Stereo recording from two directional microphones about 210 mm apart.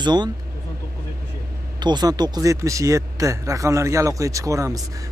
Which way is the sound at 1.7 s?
20° right (ahead or behind).